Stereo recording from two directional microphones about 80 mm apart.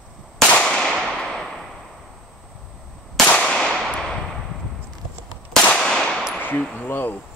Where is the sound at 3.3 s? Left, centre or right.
Centre.